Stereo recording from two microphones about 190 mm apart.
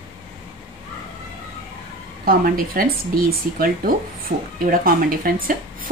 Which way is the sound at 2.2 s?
50° right (ahead or behind).